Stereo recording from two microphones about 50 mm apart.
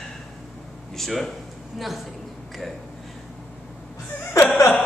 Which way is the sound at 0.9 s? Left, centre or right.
Centre.